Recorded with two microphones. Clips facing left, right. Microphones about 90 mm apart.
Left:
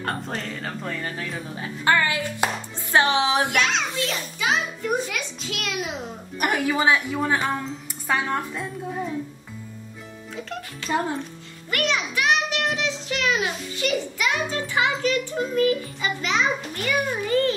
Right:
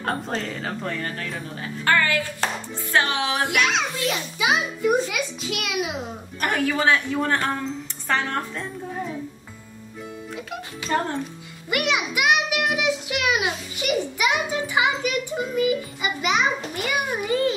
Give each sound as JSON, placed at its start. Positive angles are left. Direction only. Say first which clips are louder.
{"t": 0.0, "sound": "a child's voice", "louder": "right 2 dB", "side_deg": 0}
{"t": 1.9, "sound": "hands", "louder": "even", "side_deg": 20}
{"t": 3.4, "sound": "a child's voice", "louder": "right 1 dB", "side_deg": -10}
{"t": 6.4, "sound": "a woman's voice", "louder": "even", "side_deg": 15}
{"t": 10.3, "sound": "a child's voice", "louder": "left 3 dB", "side_deg": -10}